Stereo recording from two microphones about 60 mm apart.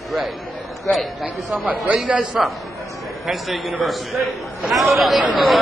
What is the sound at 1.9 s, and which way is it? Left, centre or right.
A man's voice, centre.